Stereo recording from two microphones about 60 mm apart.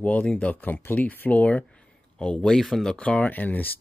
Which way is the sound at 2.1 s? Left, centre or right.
Centre.